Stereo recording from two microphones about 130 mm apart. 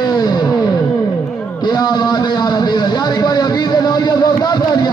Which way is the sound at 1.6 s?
30° left (ahead or behind).